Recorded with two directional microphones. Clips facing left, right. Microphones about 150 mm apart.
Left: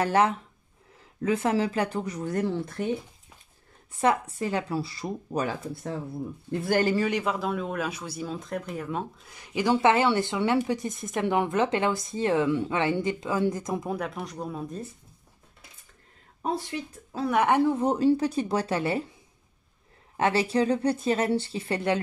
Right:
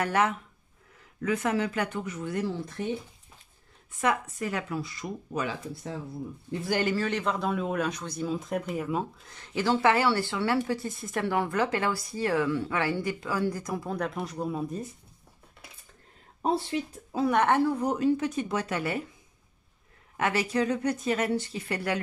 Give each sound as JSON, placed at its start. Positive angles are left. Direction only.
{"t": 0.0, "sound": "speech", "side_deg": 30}
{"t": 4.0, "sound": "speech", "side_deg": 30}
{"t": 7.0, "sound": "speech", "side_deg": 10}
{"t": 8.3, "sound": "speech", "side_deg": -10}
{"t": 9.3, "sound": "speech", "side_deg": 15}
{"t": 13.9, "sound": "speech", "side_deg": 5}
{"t": 16.7, "sound": "speech", "side_deg": -15}
{"t": 17.3, "sound": "speech", "side_deg": 10}
{"t": 20.2, "sound": "speech", "side_deg": 30}